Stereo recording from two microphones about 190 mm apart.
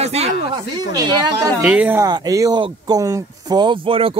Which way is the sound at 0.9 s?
20° right (ahead or behind).